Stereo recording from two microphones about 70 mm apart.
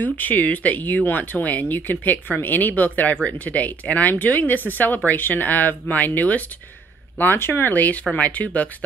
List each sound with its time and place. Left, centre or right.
0.0 s speech: left
7.7 s speech: left